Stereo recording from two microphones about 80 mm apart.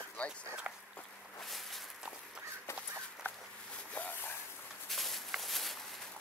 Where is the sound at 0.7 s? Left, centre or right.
Right.